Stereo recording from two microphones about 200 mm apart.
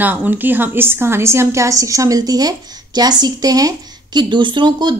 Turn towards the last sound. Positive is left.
turn(degrees=-20)  # may be behind; listen again after turning